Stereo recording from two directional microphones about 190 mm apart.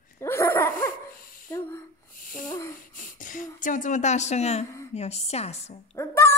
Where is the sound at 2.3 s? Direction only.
45° left (ahead or behind).